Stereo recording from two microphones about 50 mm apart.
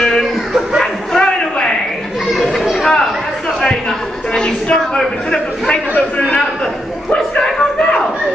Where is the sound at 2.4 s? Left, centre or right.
Centre.